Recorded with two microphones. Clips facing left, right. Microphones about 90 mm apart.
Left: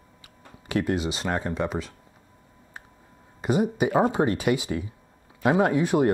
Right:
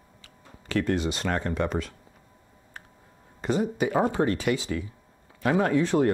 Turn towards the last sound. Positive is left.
turn(degrees=15)  # may be behind; listen again after turning